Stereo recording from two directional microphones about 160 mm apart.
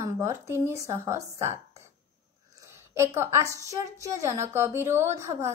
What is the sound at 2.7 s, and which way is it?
A woman's voice, 15° right (ahead or behind).